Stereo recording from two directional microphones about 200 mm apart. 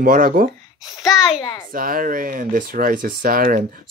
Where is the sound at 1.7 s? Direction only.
45° right (ahead or behind).